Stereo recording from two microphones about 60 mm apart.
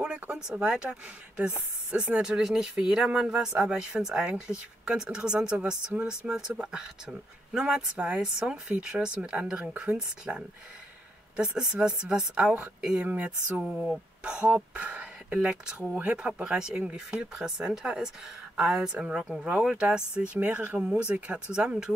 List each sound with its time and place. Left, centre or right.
0.0 s speech: centre
13.1 s speech: right
16.4 s speech: centre